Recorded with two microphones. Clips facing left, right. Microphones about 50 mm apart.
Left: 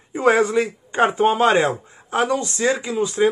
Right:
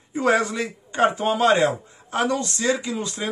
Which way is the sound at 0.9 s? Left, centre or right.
Left.